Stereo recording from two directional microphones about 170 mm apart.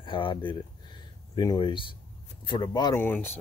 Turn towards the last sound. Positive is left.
turn(degrees=15)  # may be behind; listen again after turning